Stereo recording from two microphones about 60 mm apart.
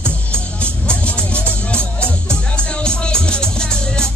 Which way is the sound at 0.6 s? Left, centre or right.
Left.